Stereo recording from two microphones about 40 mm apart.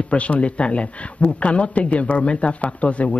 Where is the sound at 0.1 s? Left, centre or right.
Left.